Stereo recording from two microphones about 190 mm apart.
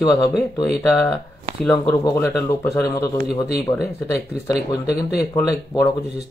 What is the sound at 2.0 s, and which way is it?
Speech, 20° left (ahead or behind).